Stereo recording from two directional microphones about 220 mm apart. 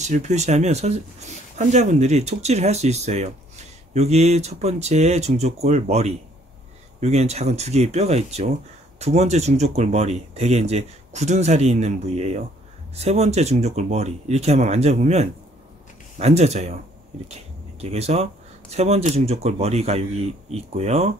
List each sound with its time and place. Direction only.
0.0 s speech: 30° right (ahead or behind)